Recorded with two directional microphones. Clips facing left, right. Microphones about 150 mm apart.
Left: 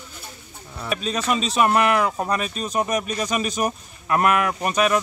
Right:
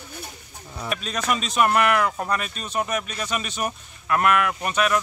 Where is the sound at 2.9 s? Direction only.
40° left (ahead or behind).